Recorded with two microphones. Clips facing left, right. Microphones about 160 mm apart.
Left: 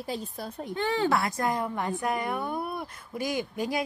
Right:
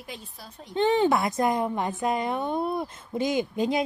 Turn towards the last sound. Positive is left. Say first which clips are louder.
# right 5 dB
turn(degrees=-20)  # may be behind; listen again after turning